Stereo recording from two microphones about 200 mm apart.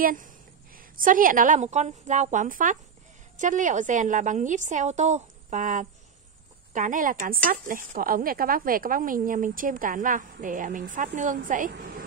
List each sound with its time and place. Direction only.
0.0 s a woman's voice: 40° right (ahead or behind)